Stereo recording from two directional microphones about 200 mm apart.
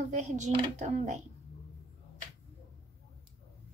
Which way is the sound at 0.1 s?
35° right (ahead or behind).